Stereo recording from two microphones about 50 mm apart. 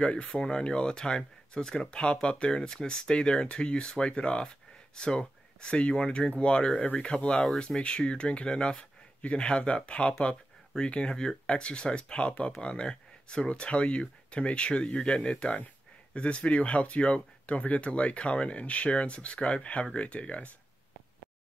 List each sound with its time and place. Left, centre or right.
0.0 s speech: left
6.8 s speech: left
7.1 s speech: centre